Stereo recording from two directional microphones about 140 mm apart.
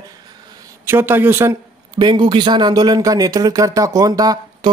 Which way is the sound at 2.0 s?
35° right (ahead or behind).